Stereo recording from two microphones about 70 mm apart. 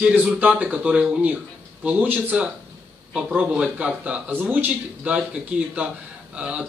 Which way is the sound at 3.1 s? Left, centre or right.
Centre.